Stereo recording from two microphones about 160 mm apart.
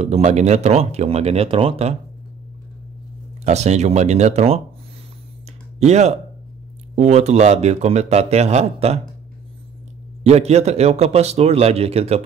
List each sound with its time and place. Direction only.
0.0 s a man's voice: 45° right (ahead or behind)
3.4 s speech: 45° right (ahead or behind)
5.8 s speech: 45° right (ahead or behind)
10.2 s a man's voice: 40° right (ahead or behind)